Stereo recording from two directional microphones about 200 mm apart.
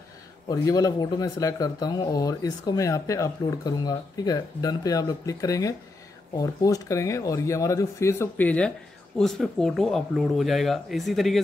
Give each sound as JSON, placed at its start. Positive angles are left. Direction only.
{"t": 0.5, "sound": "speech", "side_deg": 20}